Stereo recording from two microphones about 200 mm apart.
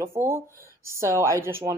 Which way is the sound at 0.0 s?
15° right (ahead or behind).